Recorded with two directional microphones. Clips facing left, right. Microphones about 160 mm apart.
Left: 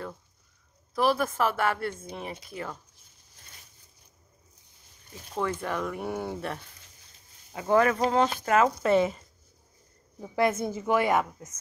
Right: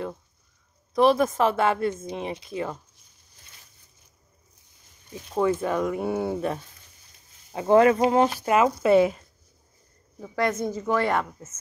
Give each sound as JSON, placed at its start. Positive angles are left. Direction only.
{"t": 0.9, "sound": "speech", "side_deg": -20}
{"t": 5.3, "sound": "speech", "side_deg": -15}
{"t": 8.0, "sound": "speech", "side_deg": -15}
{"t": 10.2, "sound": "a woman's voice", "side_deg": 15}